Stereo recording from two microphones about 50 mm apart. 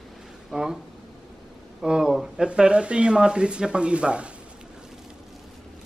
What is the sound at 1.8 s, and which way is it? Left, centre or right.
Speech, centre.